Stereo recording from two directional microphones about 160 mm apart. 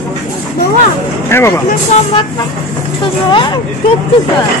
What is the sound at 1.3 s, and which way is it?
Speech, 15° left (ahead or behind).